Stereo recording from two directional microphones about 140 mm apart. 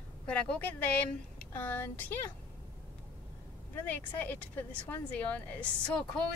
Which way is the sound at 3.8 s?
15° left (ahead or behind).